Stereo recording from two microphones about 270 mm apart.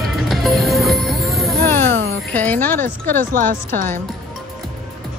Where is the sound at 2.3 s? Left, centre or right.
Centre.